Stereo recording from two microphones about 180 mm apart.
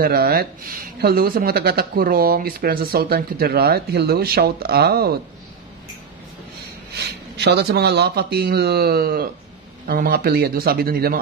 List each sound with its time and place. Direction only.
0.0 s speech: 55° right (ahead or behind)
6.9 s speech: 65° right (ahead or behind)